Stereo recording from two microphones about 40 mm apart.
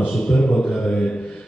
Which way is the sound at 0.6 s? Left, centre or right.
Left.